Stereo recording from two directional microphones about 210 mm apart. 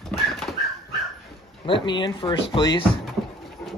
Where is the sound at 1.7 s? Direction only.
20° left (ahead or behind).